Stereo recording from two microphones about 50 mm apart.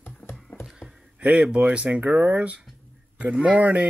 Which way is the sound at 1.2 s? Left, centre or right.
Right.